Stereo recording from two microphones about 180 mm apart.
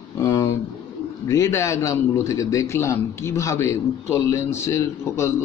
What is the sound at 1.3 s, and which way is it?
A man's voice, 20° left (ahead or behind).